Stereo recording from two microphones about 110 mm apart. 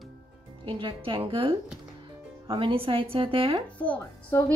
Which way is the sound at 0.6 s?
55° right (ahead or behind).